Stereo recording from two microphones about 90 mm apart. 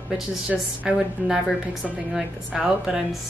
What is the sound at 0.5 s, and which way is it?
A woman's voice, 10° right (ahead or behind).